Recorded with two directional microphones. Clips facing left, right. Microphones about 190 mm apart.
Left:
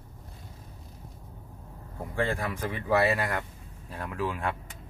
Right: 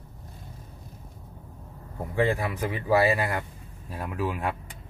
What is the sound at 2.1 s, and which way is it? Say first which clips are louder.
Speech: right 4 dB; 10° right (ahead or behind).